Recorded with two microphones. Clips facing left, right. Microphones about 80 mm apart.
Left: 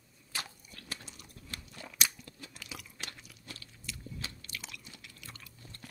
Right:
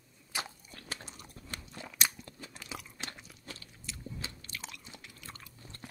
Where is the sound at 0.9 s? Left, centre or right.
Right.